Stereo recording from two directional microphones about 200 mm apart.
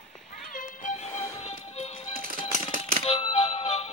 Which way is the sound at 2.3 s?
45° right (ahead or behind).